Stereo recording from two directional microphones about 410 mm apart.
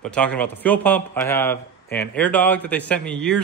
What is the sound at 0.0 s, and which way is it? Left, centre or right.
Speech, centre.